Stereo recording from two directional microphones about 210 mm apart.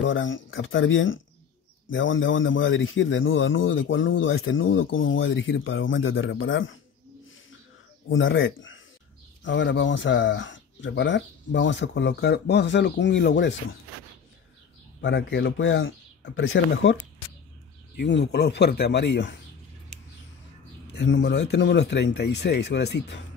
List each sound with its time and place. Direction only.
0.0 s a man's voice: 65° left (ahead or behind)
8.1 s a man's voice: 65° left (ahead or behind)
15.0 s a man's voice: 55° left (ahead or behind)
20.9 s a man's voice: 55° left (ahead or behind)